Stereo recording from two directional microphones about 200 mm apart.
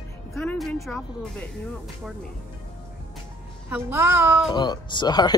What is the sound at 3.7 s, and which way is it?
Speech, 10° right (ahead or behind).